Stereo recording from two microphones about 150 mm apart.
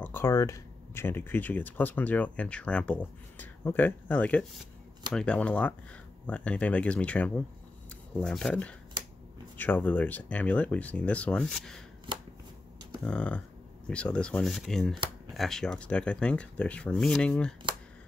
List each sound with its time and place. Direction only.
0.0 s speech: 15° left (ahead or behind)
12.1 s shuffling cards: 30° right (ahead or behind)
13.0 s speech: 5° left (ahead or behind)